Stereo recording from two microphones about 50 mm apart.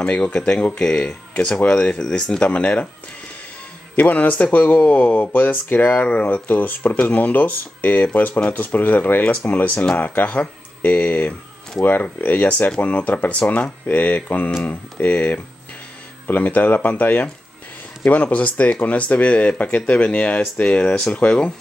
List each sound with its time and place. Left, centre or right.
0.0 s speech: left
2.5 s speech: left
3.9 s speech: left
16.3 s speech: left